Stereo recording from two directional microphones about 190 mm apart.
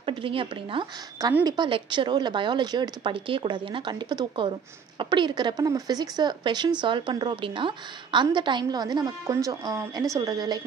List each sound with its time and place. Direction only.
0.0 s a woman's voice: 25° right (ahead or behind)